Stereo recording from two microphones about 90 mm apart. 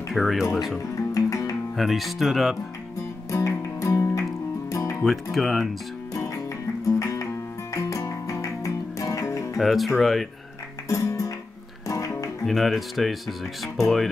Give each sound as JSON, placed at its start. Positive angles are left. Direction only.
{"t": 0.1, "sound": "speech", "side_deg": 0}
{"t": 1.1, "sound": "guitar", "side_deg": 40}
{"t": 1.8, "sound": "speech", "side_deg": 0}
{"t": 3.3, "sound": "music", "side_deg": 35}
{"t": 5.0, "sound": "speech", "side_deg": 0}
{"t": 6.1, "sound": "music", "side_deg": 35}
{"t": 9.6, "sound": "speech", "side_deg": 0}
{"t": 10.9, "sound": "music", "side_deg": 35}
{"t": 12.4, "sound": "speech", "side_deg": 0}